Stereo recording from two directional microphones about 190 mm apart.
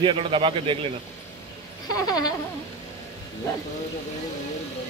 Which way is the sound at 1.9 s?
20° left (ahead or behind).